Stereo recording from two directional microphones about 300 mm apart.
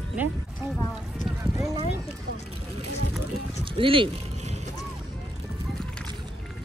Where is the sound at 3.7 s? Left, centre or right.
Centre.